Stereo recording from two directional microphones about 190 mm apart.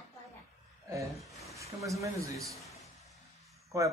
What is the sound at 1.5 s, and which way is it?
A man's voice, 15° right (ahead or behind).